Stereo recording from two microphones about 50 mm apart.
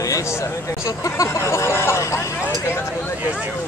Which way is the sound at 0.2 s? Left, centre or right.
Left.